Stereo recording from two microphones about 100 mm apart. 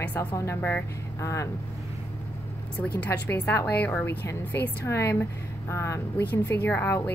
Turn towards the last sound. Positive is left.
turn(degrees=20)  # may be behind; listen again after turning